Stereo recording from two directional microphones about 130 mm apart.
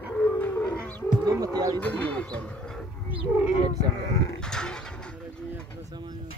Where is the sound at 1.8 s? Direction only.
10° left (ahead or behind).